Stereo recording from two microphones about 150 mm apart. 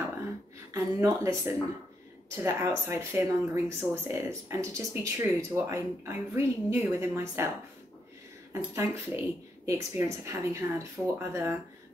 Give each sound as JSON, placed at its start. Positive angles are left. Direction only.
{"t": 0.7, "sound": "speech", "side_deg": -20}
{"t": 8.7, "sound": "speech", "side_deg": -20}